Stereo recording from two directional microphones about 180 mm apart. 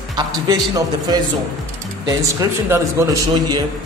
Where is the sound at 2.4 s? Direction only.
15° right (ahead or behind).